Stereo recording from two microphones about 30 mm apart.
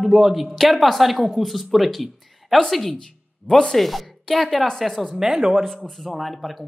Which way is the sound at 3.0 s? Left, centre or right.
Centre.